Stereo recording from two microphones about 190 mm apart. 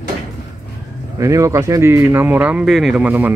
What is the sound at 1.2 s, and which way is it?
Speech, 15° right (ahead or behind).